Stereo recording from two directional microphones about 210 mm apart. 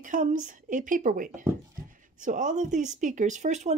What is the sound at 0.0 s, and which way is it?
Speech, 40° right (ahead or behind).